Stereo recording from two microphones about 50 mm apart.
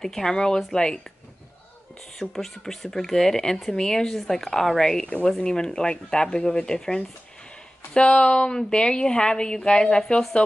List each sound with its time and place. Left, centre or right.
0.0 s speech: centre
2.1 s speech: centre
5.0 s speech: left
5.3 s speech: centre